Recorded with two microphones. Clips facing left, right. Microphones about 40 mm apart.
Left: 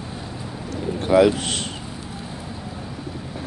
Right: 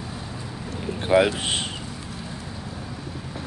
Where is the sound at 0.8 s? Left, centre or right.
Centre.